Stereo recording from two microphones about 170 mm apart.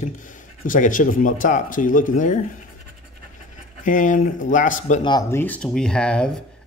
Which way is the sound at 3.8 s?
50° left (ahead or behind).